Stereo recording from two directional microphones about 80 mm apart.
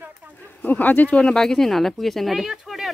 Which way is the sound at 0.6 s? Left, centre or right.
Left.